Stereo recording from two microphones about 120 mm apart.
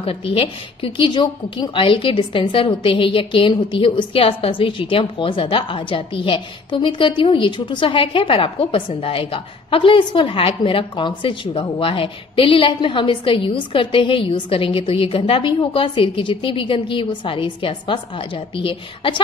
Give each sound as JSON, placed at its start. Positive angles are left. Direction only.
{"t": 0.0, "sound": "a woman's voice", "side_deg": 50}